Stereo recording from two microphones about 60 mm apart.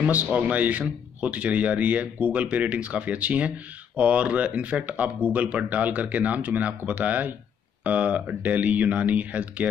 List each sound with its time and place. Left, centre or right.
0.1 s speech: right